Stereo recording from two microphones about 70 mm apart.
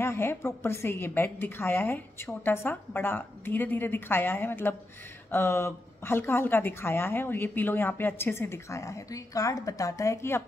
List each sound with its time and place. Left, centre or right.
0.0 s a woman's voice: left